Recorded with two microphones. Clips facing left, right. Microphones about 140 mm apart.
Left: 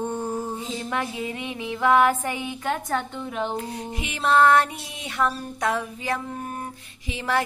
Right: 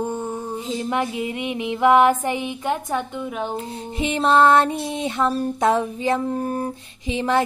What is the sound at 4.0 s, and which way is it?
Female singing, 30° right (ahead or behind).